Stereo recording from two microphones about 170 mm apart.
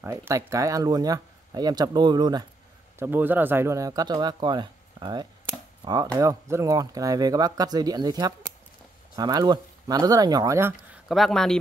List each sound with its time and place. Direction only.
0.0 s speech: 15° right (ahead or behind)
3.0 s speech: 10° right (ahead or behind)
11.1 s speech: centre (ahead or behind)